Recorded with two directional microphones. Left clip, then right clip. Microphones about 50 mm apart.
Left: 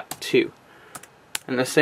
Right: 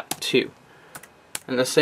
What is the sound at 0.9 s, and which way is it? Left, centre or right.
Computer keyboard, left.